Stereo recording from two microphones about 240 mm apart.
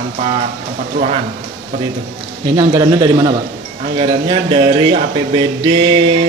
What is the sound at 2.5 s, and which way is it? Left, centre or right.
Speech, centre.